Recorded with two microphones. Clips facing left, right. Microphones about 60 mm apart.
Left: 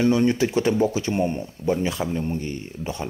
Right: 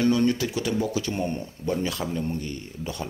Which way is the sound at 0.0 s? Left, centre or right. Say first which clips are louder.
Left 3 dB; left.